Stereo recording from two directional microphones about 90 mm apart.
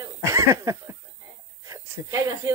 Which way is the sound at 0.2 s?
30° right (ahead or behind).